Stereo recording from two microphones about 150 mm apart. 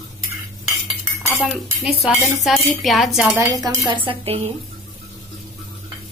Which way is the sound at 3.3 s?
20° right (ahead or behind).